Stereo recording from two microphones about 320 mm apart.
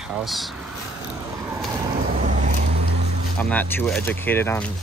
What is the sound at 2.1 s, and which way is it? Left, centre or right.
Vehicle, right.